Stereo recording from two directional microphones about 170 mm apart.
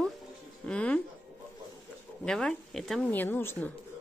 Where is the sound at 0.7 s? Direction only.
5° left (ahead or behind).